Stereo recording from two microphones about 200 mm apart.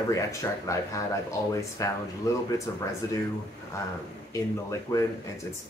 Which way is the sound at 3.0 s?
15° left (ahead or behind).